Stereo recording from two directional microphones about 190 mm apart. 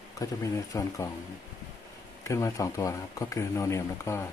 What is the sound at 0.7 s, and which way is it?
Speech, 15° left (ahead or behind).